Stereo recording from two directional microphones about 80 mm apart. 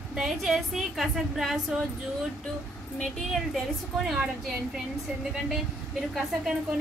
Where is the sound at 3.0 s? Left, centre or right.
Centre.